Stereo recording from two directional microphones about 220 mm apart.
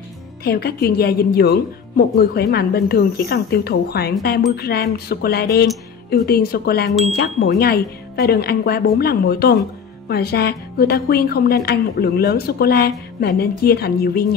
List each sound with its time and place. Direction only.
0.4 s speech: 45° left (ahead or behind)